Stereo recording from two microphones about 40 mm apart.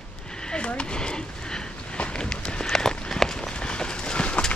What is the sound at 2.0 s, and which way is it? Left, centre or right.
Run, left.